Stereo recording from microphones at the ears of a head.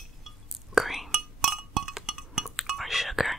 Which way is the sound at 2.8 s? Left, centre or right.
Centre.